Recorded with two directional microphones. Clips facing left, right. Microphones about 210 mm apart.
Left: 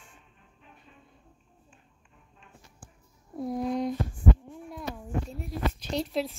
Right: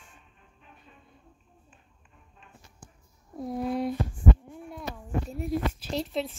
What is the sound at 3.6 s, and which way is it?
Speech, 5° right (ahead or behind).